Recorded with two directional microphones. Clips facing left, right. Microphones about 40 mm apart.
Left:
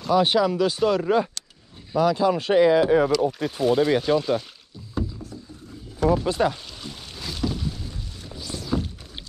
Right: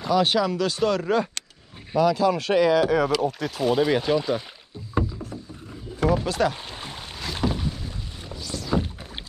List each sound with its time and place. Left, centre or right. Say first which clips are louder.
0.1 s speech: left 2 dB; centre
2.0 s speech: even; centre
3.2 s speech: left 2 dB; centre
4.9 s rowboat: right 3 dB; right
6.0 s a sound: left 2 dB; right
6.5 s boat: right 2 dB; right
7.3 s rowboat: right 2 dB; right
8.4 s a sound: even; centre
8.6 s rowboat: right 2 dB; centre